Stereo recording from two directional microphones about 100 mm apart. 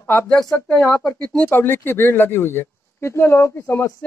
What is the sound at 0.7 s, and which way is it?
Speech, 20° left (ahead or behind).